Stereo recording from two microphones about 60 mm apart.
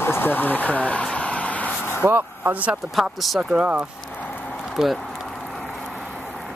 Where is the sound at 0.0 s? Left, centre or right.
Left.